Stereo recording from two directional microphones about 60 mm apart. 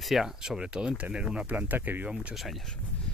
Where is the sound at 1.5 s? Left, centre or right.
Right.